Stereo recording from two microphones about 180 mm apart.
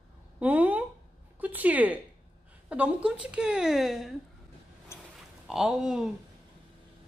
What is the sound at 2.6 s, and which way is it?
A woman's voice, 5° right (ahead or behind).